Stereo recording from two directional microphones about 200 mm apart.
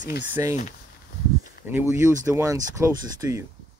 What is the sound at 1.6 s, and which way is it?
Speech, 10° right (ahead or behind).